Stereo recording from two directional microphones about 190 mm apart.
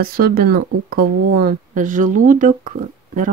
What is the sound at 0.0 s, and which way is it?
Speech, 50° right (ahead or behind).